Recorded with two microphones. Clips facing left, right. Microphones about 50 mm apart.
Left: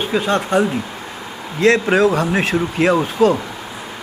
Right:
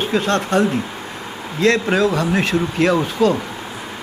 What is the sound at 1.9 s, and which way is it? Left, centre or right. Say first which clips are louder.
Speech: left 3 dB; left.